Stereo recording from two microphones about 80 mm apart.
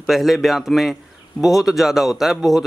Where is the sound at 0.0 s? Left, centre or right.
Centre.